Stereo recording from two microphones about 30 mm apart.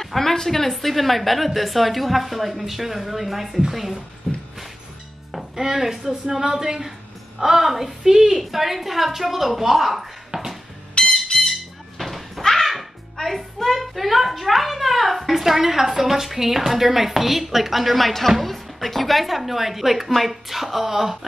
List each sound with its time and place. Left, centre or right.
0.0 s a child's voice: centre
4.2 s a sound: left
5.6 s a woman's voice: centre
10.3 s music: right
11.0 s music: left
12.0 s a sound: centre
12.4 s music: centre
13.7 s a child's voice: centre